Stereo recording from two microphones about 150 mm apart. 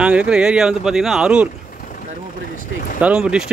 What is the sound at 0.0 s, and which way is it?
Speech, 5° right (ahead or behind).